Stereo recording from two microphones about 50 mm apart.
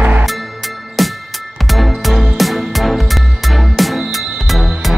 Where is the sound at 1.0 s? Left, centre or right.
Centre.